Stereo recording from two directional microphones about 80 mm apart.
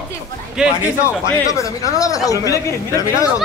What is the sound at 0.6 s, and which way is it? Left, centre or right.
Speech, centre.